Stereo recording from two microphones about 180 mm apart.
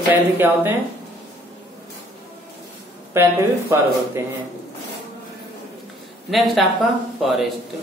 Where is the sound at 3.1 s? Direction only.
15° right (ahead or behind).